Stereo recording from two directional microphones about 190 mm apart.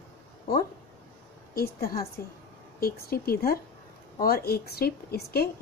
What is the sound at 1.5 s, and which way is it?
A woman's voice, 50° left (ahead or behind).